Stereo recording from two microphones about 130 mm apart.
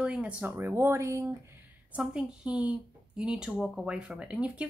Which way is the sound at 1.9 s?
5° right (ahead or behind).